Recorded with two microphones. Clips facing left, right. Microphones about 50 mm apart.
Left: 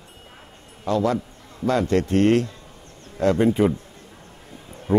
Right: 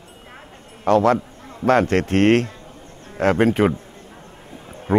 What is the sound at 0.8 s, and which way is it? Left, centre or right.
Speech, right.